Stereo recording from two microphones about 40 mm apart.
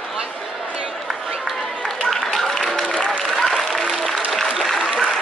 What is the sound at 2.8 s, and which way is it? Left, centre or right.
Applause, left.